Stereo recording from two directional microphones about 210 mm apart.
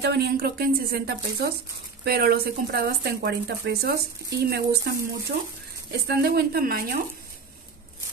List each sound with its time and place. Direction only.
0.0 s speech: 50° right (ahead or behind)